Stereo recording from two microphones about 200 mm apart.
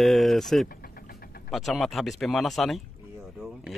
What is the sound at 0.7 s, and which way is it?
Vehicle, 50° left (ahead or behind).